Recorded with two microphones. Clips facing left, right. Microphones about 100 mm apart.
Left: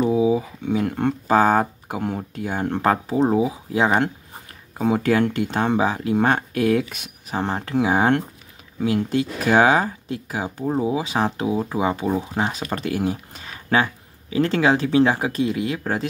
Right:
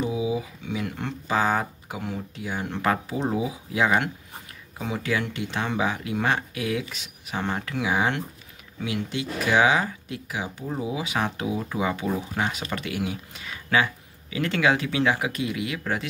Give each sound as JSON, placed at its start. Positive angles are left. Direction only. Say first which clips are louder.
{"t": 0.0, "sound": "speech", "louder": "left 8 dB", "side_deg": 45}
{"t": 4.7, "sound": "speech", "louder": "left 9 dB", "side_deg": 45}
{"t": 7.2, "sound": "speech", "louder": "left 4 dB", "side_deg": 35}